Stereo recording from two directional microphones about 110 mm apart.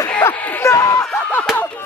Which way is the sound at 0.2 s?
15° left (ahead or behind).